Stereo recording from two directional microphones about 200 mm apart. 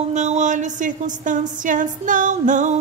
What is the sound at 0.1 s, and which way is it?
Music, 35° right (ahead or behind).